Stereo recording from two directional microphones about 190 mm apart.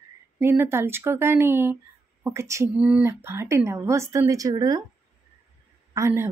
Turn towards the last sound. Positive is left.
turn(degrees=-15)  # may be behind; listen again after turning